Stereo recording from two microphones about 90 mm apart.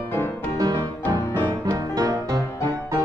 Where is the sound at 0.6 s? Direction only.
45° right (ahead or behind).